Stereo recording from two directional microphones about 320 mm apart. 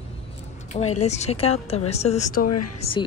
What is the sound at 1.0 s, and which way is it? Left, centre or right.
A woman's voice, left.